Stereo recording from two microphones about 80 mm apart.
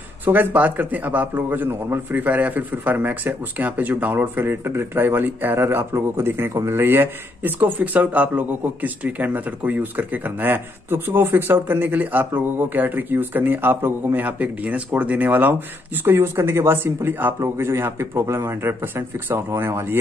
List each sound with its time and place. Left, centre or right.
0.2 s a man's voice: right